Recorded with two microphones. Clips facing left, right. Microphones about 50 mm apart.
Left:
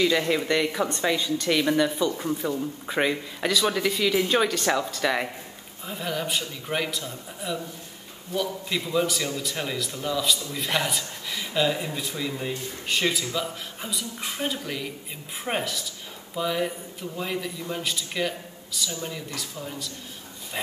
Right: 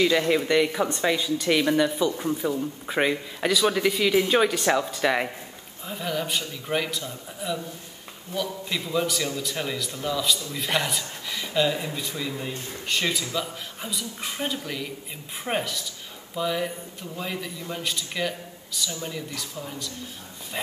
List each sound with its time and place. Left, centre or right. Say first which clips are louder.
0.0 s speech: right 1 dB; centre
5.9 s speech: right 1 dB; centre